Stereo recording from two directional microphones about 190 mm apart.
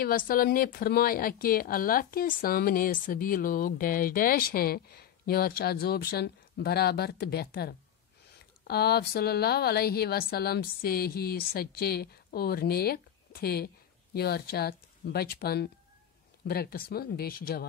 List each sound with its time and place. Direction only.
0.0 s a woman's voice: 50° left (ahead or behind)